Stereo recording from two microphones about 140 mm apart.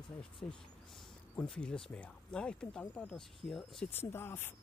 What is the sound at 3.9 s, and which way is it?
Speech, 15° left (ahead or behind).